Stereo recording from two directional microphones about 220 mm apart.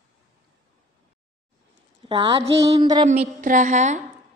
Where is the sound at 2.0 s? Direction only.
25° right (ahead or behind).